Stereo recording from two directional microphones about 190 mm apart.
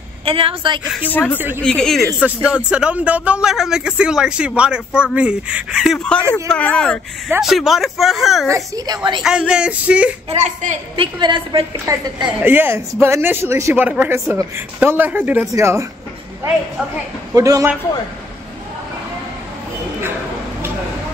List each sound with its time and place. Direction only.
0.2 s a woman's voice: 30° right (ahead or behind)
1.6 s speech: 5° left (ahead or behind)
7.2 s speech: 5° right (ahead or behind)
8.5 s a woman's voice: 15° right (ahead or behind)
9.2 s speech: 5° right (ahead or behind)
10.3 s a woman's voice: 40° right (ahead or behind)
11.1 s a woman's voice: 25° right (ahead or behind)